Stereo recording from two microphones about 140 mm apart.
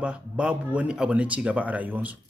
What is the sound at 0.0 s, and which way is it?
Speech, 5° right (ahead or behind).